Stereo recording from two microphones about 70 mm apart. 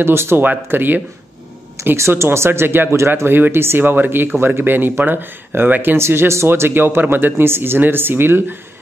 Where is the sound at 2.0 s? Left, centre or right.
Right.